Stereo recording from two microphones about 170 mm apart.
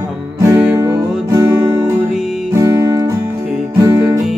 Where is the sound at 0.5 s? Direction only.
5° right (ahead or behind).